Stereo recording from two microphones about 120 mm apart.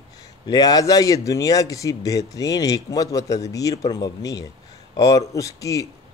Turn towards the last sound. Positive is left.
turn(degrees=30)  # may be behind; listen again after turning